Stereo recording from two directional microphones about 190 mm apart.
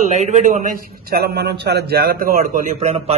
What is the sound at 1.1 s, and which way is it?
A man's voice, 55° right (ahead or behind).